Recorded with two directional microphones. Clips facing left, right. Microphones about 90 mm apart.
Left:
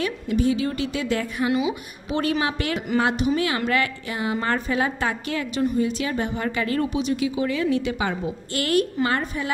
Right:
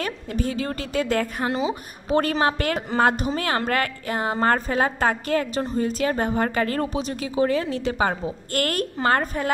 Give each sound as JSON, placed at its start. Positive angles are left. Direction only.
{"t": 0.0, "sound": "a woman's voice", "side_deg": -45}